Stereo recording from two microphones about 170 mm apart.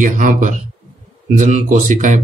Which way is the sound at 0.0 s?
50° right (ahead or behind).